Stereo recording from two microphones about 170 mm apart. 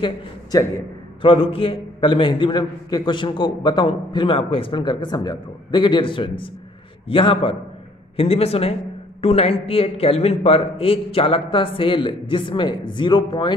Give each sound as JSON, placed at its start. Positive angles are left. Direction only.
{"t": 0.0, "sound": "a man's voice", "side_deg": 20}
{"t": 1.2, "sound": "a man's voice", "side_deg": 30}